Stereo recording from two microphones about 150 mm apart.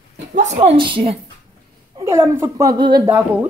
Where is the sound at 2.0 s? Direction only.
20° right (ahead or behind).